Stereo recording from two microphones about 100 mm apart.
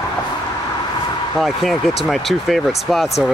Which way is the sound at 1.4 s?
Centre (ahead or behind).